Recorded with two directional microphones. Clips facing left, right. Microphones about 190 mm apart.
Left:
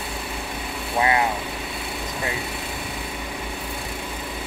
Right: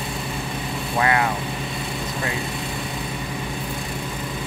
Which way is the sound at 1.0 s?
20° left (ahead or behind).